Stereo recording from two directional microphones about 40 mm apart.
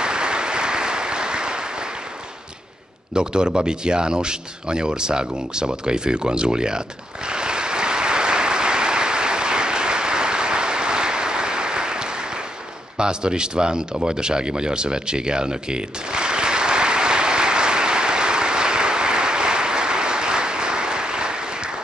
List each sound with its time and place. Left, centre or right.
0.0 s applause: right
3.2 s speech: right
7.2 s applause: right
12.9 s a sound: right